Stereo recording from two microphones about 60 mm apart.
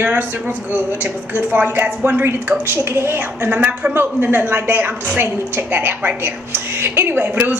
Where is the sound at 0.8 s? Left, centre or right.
Left.